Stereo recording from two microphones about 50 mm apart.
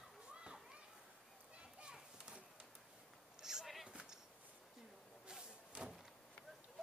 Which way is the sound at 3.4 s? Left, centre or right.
Centre.